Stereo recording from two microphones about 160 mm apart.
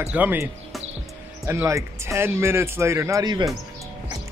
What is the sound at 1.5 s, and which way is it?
Speech, 15° right (ahead or behind).